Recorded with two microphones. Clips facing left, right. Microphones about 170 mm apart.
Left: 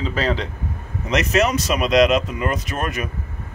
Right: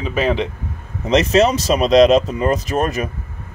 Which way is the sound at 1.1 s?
30° right (ahead or behind).